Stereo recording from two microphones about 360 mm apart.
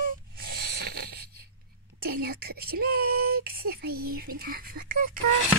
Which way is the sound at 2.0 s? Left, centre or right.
Right.